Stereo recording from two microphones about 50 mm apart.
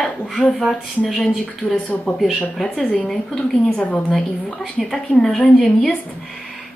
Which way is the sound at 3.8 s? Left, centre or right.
Left.